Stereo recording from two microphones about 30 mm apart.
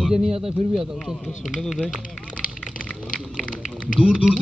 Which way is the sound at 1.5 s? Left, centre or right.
Centre.